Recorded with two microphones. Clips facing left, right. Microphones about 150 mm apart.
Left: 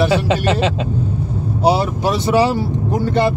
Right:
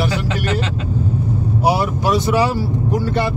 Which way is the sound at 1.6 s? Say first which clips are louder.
Left 2 dB; 25° left (ahead or behind).